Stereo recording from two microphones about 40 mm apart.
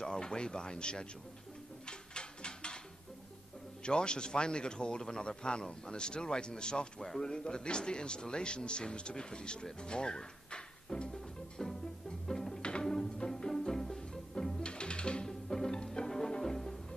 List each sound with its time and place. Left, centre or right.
0.0 s a man's voice: centre
1.9 s a sound: left
3.8 s a man's voice: left
12.3 s music: centre
15.2 s music: centre